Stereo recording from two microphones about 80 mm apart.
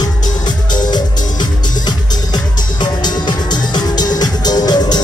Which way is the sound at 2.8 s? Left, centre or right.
Left.